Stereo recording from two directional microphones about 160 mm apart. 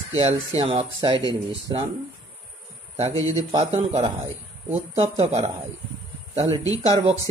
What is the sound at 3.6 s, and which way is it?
Speech, 45° right (ahead or behind).